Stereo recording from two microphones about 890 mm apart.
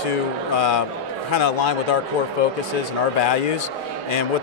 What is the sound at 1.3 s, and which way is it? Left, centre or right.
Speech, left.